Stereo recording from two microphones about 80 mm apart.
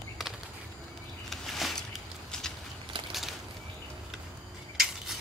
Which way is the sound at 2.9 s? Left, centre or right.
Right.